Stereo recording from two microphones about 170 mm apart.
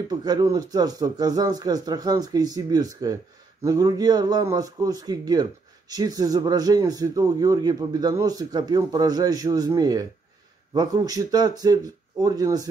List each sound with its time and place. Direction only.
0.1 s speech: 25° right (ahead or behind)